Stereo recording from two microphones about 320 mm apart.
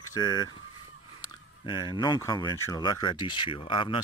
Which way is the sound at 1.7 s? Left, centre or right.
Centre.